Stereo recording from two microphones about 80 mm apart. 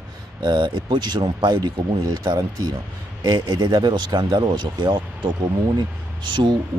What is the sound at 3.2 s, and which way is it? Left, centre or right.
Speech, right.